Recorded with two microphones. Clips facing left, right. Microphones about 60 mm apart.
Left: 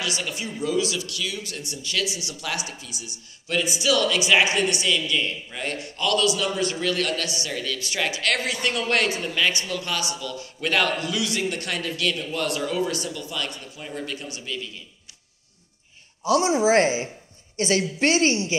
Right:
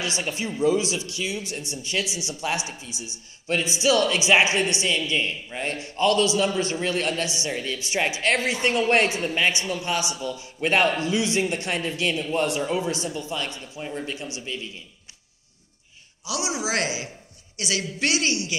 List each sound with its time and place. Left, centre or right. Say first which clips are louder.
0.0 s a man's voice: right 1 dB; right
16.3 s a woman's voice: left 9 dB; left